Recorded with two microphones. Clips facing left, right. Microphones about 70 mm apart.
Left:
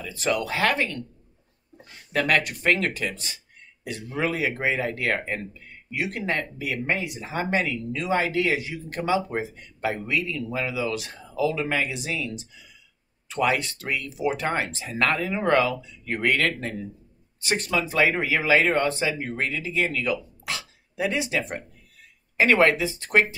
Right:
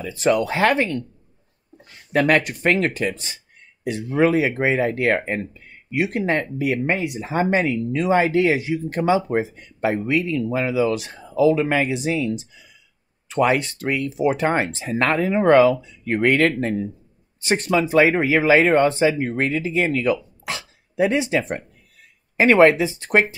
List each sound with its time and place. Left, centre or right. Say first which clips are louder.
0.0 s speech: right 7 dB; right
2.1 s speech: right 5 dB; right